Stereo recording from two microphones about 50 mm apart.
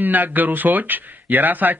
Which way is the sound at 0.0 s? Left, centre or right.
Right.